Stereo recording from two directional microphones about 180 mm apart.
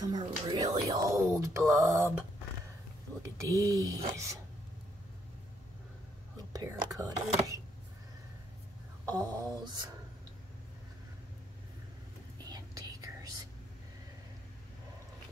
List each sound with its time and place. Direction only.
0.0 s a sound: 20° right (ahead or behind)
3.2 s speech: 15° right (ahead or behind)
6.3 s speech: 20° right (ahead or behind)
9.0 s speech: 20° right (ahead or behind)
12.4 s whispering: 20° right (ahead or behind)